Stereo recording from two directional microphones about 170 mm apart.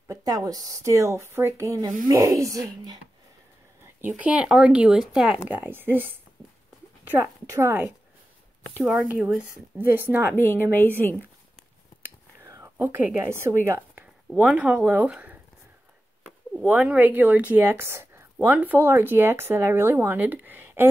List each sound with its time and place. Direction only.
0.1 s a woman's voice: 20° right (ahead or behind)
4.1 s speech: 5° right (ahead or behind)
9.1 s speech: 5° right (ahead or behind)
10.3 s a woman's voice: 15° left (ahead or behind)
12.4 s a woman's voice: 15° right (ahead or behind)